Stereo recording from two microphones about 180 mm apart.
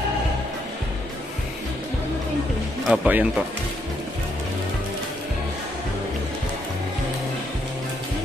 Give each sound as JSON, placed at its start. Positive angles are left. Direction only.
{"t": 2.9, "sound": "speech", "side_deg": -5}